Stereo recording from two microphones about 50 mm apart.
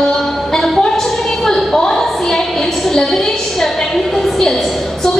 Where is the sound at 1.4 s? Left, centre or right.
Centre.